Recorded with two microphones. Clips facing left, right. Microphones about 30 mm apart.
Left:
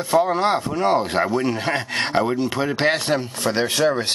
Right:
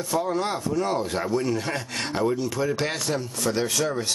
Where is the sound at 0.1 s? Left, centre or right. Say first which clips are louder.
Left 8 dB; left.